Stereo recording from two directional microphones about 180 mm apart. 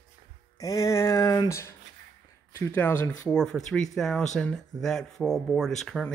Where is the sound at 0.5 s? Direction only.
20° left (ahead or behind).